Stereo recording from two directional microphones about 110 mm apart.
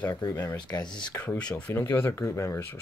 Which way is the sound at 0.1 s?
35° left (ahead or behind).